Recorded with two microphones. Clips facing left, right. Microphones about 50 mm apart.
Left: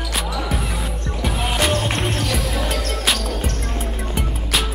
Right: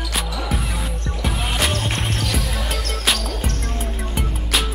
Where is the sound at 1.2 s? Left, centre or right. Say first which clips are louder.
Left 2 dB; centre.